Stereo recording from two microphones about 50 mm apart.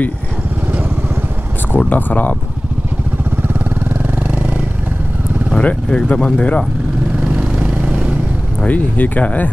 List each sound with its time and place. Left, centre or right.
1.8 s speech: left
3.4 s vehicle: right
5.6 s speech: left
7.2 s vehicle: centre
8.5 s speech: left